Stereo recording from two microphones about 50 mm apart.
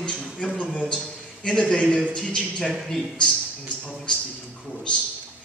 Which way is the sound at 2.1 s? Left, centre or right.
Centre.